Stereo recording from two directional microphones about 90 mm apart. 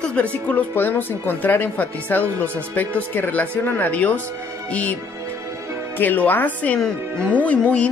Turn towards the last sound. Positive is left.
turn(degrees=15)  # may be behind; listen again after turning